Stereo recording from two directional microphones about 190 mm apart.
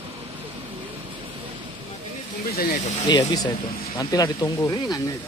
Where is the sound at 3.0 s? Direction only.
20° left (ahead or behind).